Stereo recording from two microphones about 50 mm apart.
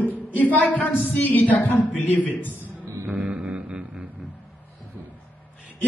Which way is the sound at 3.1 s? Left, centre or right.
Right.